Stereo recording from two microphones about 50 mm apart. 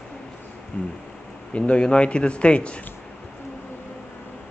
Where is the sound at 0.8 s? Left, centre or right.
Left.